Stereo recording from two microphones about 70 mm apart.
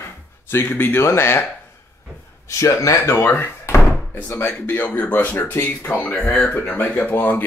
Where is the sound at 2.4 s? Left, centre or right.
Left.